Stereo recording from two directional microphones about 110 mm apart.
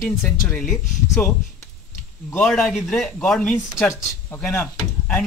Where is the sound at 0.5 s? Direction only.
5° left (ahead or behind).